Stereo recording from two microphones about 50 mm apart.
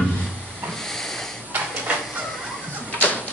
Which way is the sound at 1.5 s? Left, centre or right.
Right.